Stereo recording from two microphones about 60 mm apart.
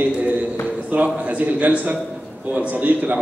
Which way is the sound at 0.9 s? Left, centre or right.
Right.